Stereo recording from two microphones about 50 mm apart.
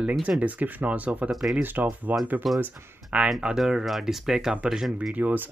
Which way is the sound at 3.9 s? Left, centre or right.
Centre.